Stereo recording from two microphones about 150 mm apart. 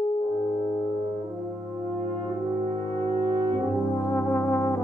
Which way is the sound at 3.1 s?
25° right (ahead or behind).